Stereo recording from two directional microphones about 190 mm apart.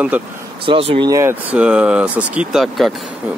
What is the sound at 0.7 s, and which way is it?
Speech, 30° right (ahead or behind).